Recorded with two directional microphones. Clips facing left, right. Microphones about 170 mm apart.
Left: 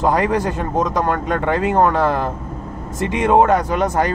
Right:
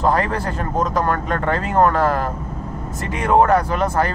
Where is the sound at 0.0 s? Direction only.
15° left (ahead or behind).